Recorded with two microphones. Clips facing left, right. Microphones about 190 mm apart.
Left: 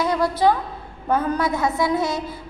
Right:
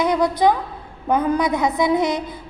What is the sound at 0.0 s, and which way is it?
A woman's voice, 15° right (ahead or behind).